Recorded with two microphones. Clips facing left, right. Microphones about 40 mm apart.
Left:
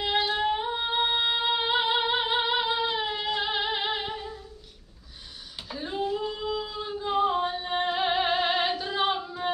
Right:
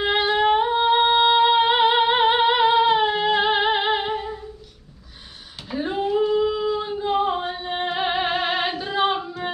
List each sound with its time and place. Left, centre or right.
0.0 s singing: right
2.9 s music: right
5.7 s female singing: right
6.6 s singing: right
8.3 s female singing: right